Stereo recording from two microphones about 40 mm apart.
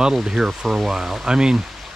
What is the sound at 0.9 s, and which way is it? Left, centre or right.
Speech, centre.